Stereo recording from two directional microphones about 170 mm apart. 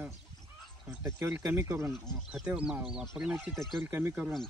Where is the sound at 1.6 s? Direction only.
15° right (ahead or behind).